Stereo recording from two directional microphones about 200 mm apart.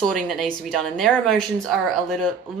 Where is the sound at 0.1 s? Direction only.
Centre (ahead or behind).